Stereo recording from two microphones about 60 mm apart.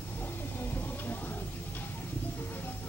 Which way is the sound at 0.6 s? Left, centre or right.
Left.